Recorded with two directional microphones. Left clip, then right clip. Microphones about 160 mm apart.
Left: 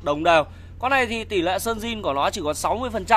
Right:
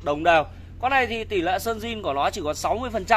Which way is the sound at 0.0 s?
40° left (ahead or behind).